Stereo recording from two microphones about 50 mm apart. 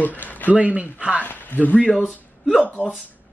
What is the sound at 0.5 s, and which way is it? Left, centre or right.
Speech, right.